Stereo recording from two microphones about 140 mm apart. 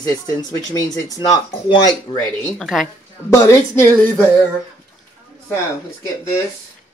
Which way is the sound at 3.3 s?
20° left (ahead or behind).